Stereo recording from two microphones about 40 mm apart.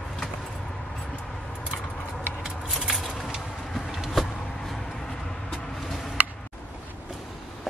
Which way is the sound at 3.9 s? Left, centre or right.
Centre.